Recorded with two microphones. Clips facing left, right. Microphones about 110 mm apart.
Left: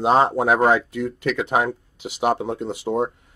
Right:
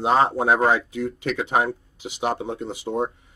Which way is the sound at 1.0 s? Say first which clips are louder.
Left 2 dB; centre (ahead or behind).